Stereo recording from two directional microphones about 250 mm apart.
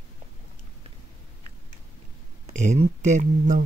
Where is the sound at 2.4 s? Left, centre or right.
Right.